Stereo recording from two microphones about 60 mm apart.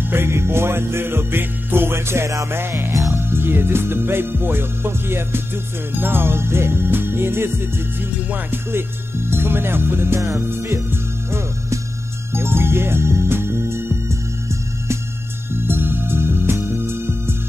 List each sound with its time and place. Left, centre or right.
0.1 s music: right
15.5 s music: right